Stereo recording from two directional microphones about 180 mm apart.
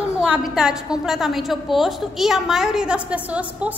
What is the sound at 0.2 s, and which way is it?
A woman's voice, 5° right (ahead or behind).